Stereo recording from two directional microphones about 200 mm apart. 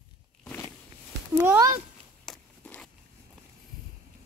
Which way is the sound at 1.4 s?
15° right (ahead or behind).